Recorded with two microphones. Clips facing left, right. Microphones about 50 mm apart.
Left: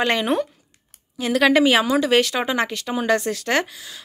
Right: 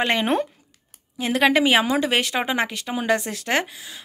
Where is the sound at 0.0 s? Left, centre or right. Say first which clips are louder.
Left 1 dB; centre.